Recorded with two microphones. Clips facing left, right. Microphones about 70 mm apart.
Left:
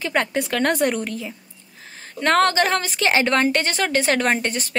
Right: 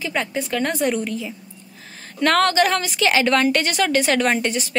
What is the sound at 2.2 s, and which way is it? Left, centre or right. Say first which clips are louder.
A woman's voice: right 1 dB; left.